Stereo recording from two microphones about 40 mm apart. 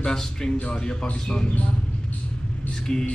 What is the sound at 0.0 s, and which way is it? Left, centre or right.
A man's voice, centre.